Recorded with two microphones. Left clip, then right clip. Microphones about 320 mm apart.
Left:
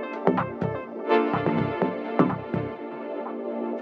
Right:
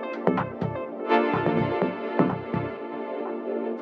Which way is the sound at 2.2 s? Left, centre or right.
Right.